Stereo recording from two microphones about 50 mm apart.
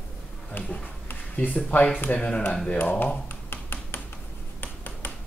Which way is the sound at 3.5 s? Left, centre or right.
Left.